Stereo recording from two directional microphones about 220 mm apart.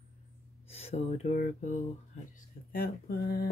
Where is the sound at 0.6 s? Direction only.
25° left (ahead or behind).